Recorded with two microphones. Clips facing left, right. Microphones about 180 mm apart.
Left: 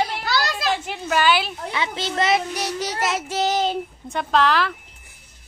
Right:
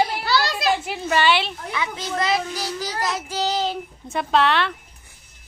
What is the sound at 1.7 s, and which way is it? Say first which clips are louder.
Child singing: left 1 dB; 30° left (ahead or behind).